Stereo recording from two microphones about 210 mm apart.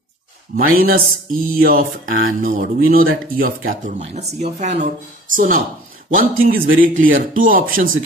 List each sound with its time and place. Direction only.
0.6 s mantra: 45° right (ahead or behind)
4.0 s a man's voice: 30° right (ahead or behind)